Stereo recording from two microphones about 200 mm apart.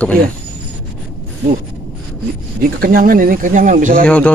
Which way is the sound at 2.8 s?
45° right (ahead or behind).